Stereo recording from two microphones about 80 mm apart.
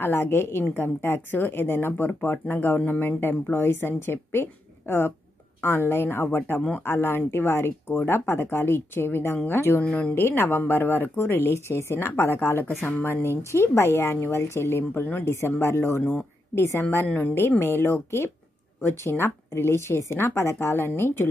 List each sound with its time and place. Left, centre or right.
0.0 s a woman's voice: left
9.8 s speech: centre
10.1 s speech: left
16.0 s speech: centre